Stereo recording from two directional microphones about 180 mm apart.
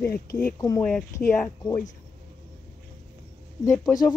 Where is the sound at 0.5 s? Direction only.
20° left (ahead or behind).